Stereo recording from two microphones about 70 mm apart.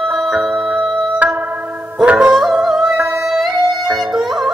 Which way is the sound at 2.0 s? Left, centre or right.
Centre.